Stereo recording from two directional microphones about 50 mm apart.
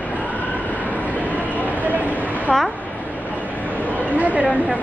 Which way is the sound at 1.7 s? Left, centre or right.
Right.